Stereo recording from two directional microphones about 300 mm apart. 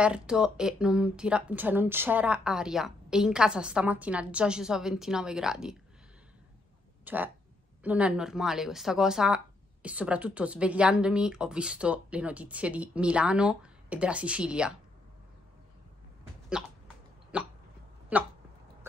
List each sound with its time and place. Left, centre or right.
0.0 s a woman's voice: centre
7.1 s a woman's voice: centre
16.6 s a woman's voice: centre